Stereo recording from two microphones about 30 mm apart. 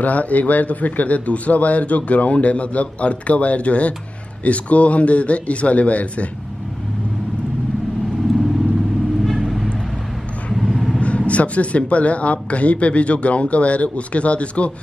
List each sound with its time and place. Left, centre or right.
0.0 s a man's voice: left
9.2 s vehicle: centre
11.0 s a man's voice: left